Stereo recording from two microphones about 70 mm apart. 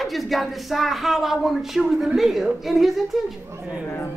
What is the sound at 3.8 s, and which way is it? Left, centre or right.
Speech, left.